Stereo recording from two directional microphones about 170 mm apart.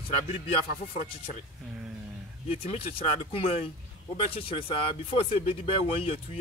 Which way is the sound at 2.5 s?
35° left (ahead or behind).